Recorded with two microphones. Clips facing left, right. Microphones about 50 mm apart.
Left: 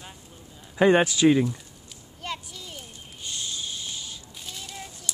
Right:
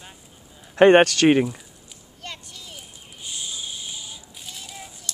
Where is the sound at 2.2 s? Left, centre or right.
Centre.